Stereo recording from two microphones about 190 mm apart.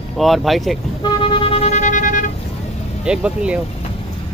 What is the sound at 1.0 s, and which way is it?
Vehicle, 30° left (ahead or behind).